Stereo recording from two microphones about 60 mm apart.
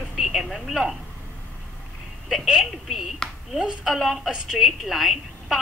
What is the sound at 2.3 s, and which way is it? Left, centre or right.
Speech, centre.